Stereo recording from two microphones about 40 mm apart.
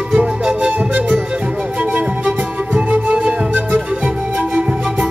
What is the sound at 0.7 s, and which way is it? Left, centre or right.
Music, right.